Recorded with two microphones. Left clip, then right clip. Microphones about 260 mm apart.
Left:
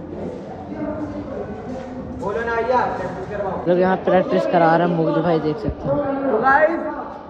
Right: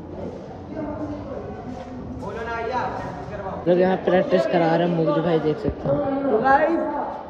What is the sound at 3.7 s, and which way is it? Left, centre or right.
Speech, centre.